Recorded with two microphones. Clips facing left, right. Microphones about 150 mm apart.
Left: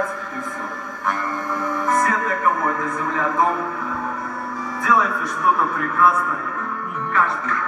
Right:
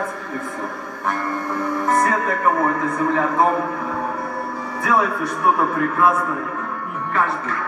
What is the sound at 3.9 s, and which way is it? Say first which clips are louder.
Music: right 2 dB; 30° right (ahead or behind).